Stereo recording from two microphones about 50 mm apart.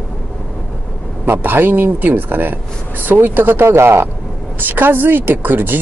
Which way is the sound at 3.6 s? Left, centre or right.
Right.